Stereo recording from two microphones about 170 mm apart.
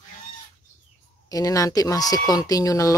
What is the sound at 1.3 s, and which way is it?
Speech, 20° left (ahead or behind).